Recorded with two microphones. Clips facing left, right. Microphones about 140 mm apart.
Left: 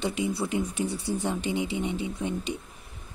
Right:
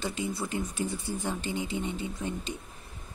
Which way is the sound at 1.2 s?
15° left (ahead or behind).